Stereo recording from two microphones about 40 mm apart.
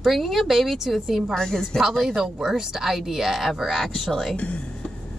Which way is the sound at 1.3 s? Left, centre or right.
Centre.